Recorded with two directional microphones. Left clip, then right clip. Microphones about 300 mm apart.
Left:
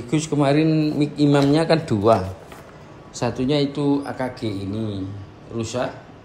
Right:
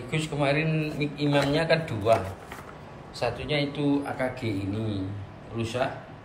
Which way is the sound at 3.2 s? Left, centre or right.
Left.